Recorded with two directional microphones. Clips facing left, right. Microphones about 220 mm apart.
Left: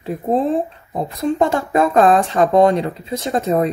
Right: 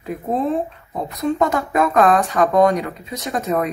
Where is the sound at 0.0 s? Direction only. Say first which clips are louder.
Left 3 dB; 30° left (ahead or behind).